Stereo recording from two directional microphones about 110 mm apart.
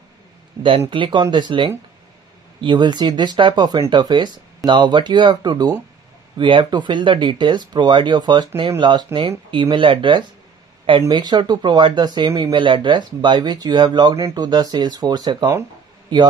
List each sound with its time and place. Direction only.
0.6 s speech: 50° right (ahead or behind)